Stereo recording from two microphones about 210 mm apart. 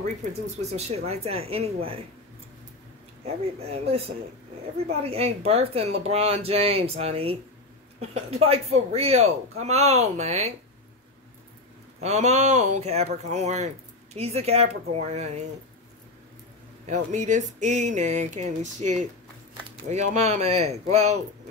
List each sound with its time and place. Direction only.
0.2 s speech: 30° right (ahead or behind)
3.5 s a man's voice: 30° right (ahead or behind)
12.0 s a man's voice: 30° right (ahead or behind)
16.8 s a man's voice: 35° right (ahead or behind)